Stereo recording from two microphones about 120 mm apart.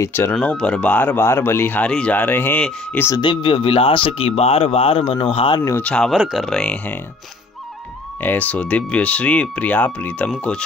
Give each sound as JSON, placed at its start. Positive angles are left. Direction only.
{"t": 0.0, "sound": "speech", "side_deg": 20}
{"t": 0.4, "sound": "speech", "side_deg": 10}
{"t": 3.2, "sound": "speech", "side_deg": 45}
{"t": 5.8, "sound": "speech", "side_deg": 5}
{"t": 8.2, "sound": "speech", "side_deg": 15}